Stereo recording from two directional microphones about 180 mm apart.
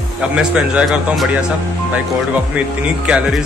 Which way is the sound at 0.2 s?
5° right (ahead or behind).